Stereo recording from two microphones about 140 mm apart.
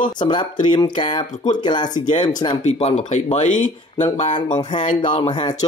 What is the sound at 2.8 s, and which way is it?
Speech, 50° left (ahead or behind).